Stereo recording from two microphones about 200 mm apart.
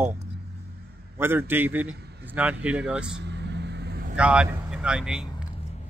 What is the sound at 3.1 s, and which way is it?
Vehicle, 60° right (ahead or behind).